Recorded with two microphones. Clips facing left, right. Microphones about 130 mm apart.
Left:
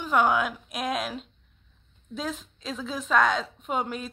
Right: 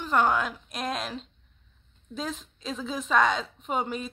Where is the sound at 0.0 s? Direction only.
5° left (ahead or behind).